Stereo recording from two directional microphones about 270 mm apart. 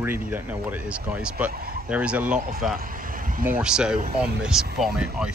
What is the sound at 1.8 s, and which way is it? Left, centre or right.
Speech, centre.